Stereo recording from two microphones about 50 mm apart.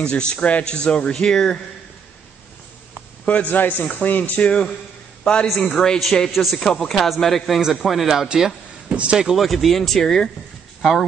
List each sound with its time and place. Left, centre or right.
0.0 s speech: left
2.9 s a man's voice: left; by 5.9 s centre
6.3 s speech: centre
6.6 s speech: centre
8.8 s speech: right
9.2 s speech: centre